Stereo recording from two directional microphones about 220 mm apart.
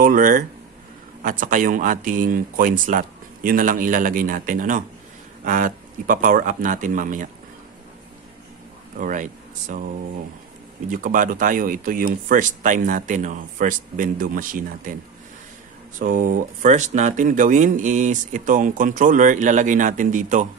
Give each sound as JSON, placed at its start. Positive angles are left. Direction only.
{"t": 0.0, "sound": "speech", "side_deg": -40}
{"t": 8.9, "sound": "speech", "side_deg": -35}
{"t": 16.0, "sound": "speech", "side_deg": -40}